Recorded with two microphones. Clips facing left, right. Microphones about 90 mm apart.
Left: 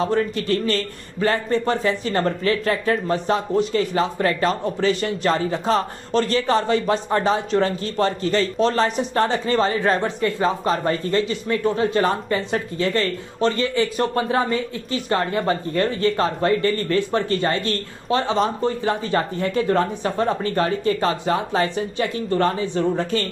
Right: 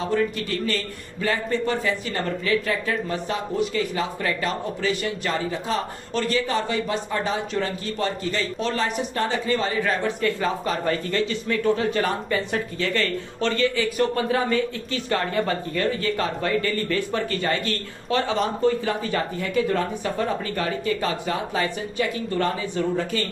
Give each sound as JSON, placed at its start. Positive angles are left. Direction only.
{"t": 0.0, "sound": "speech", "side_deg": 35}
{"t": 10.0, "sound": "speech", "side_deg": 30}